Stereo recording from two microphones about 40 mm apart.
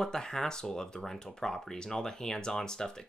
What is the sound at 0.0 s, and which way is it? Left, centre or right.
Speech, centre.